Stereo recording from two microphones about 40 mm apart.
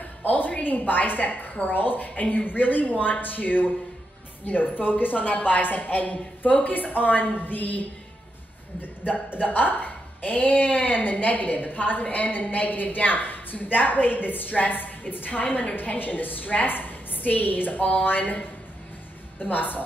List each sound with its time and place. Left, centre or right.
0.2 s speech: left
9.4 s speech: left
19.4 s speech: left